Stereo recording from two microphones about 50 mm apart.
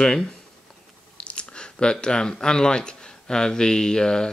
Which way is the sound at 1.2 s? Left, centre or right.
Left.